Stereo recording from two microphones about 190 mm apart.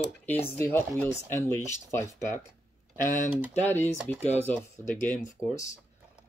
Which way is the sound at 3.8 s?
10° left (ahead or behind).